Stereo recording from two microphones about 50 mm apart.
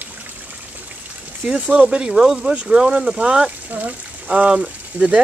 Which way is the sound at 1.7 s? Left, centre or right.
Right.